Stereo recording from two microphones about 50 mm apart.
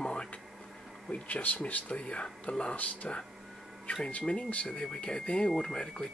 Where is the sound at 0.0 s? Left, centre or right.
Centre.